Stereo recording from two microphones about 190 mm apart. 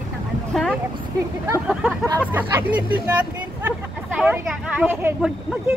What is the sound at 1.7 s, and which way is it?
Speech, 5° right (ahead or behind).